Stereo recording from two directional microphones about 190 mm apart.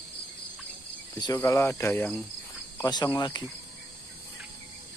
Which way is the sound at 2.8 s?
20° left (ahead or behind).